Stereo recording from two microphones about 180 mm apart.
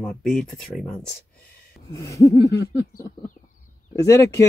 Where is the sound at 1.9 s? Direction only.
15° left (ahead or behind).